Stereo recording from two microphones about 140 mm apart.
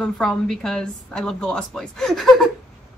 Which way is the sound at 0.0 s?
5° left (ahead or behind).